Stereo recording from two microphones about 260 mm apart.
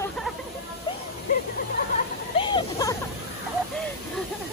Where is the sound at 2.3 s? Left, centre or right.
Centre.